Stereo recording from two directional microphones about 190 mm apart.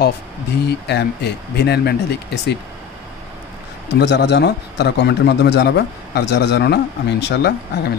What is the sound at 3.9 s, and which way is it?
Speech, 65° left (ahead or behind).